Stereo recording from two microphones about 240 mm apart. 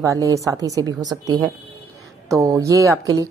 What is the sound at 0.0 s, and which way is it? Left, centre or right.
Speech, centre.